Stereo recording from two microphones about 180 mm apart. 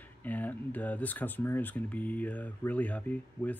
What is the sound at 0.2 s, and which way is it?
Speech, 10° left (ahead or behind).